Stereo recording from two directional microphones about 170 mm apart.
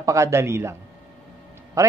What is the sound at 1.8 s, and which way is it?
Speech, 20° right (ahead or behind).